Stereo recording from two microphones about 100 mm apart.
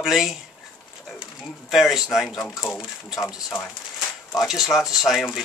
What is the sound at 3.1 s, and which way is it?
Speech, 40° left (ahead or behind).